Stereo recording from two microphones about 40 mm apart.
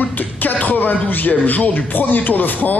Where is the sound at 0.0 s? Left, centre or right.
Left.